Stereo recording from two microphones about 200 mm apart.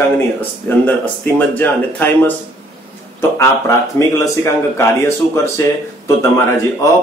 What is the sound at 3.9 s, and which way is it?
Speech, 15° left (ahead or behind).